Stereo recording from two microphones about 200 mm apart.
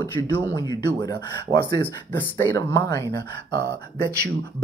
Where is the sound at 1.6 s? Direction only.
10° left (ahead or behind).